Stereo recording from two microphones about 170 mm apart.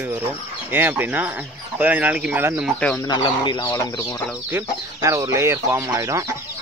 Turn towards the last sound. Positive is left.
turn(degrees=-20)  # may be behind; listen again after turning